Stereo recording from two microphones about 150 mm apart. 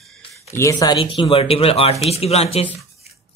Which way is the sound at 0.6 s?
20° left (ahead or behind).